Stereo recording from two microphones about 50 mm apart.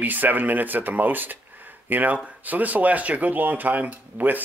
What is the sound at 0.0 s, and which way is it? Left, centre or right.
Speech, right.